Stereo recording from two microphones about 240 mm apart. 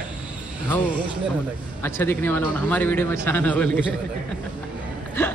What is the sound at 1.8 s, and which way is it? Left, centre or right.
Speech, centre.